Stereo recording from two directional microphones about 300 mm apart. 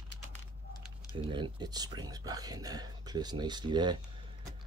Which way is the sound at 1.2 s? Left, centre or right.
Centre.